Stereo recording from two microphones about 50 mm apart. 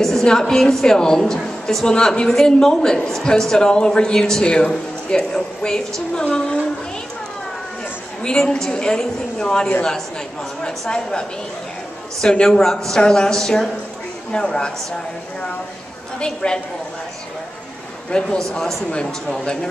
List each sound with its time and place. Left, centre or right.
0.0 s a man's voice: centre
8.2 s a man's voice: centre
16.2 s a man's voice: centre
18.1 s a man's voice: centre
18.5 s a man's voice: centre